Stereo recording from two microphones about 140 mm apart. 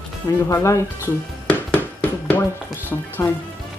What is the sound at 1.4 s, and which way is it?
Music, 10° left (ahead or behind).